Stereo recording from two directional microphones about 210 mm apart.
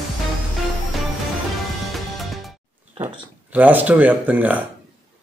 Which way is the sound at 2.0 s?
Centre (ahead or behind).